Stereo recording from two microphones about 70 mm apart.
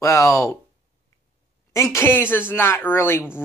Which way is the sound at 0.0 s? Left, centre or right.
Left.